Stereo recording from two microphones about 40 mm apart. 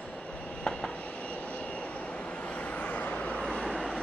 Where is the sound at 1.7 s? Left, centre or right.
Left.